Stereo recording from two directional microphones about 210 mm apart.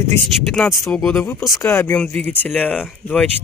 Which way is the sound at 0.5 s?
Centre (ahead or behind).